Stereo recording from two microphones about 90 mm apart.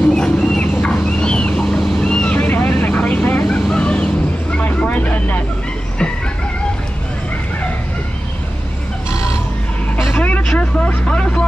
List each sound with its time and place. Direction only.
0.1 s a sound: 10° left (ahead or behind)
0.7 s vehicle: 10° left (ahead or behind)
10.1 s vehicle: 15° left (ahead or behind)